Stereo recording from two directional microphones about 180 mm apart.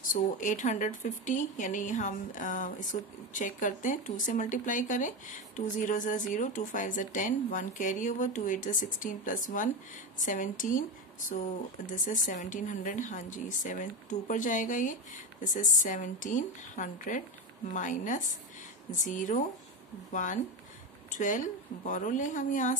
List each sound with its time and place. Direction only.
0.1 s a woman's voice: 45° left (ahead or behind)